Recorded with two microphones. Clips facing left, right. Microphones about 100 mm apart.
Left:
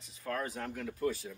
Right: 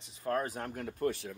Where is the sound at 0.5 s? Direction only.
45° right (ahead or behind).